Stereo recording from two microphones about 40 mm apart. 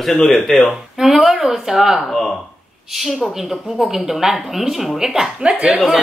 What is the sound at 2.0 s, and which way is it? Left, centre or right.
Speech, centre.